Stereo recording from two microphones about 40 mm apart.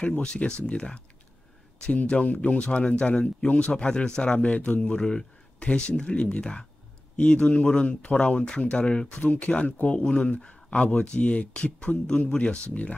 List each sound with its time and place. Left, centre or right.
0.2 s speech: left
2.0 s speech: left
4.4 s speech: left
9.1 s speech: left